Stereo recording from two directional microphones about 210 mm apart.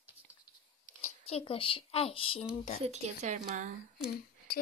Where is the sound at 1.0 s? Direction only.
30° left (ahead or behind).